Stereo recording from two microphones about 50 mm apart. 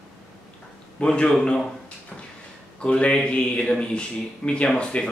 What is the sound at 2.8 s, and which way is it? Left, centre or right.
A man's voice, left.